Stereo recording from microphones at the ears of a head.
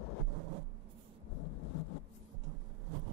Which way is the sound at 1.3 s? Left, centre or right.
Left.